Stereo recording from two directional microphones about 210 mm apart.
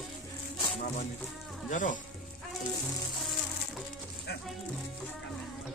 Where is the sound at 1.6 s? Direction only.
40° left (ahead or behind).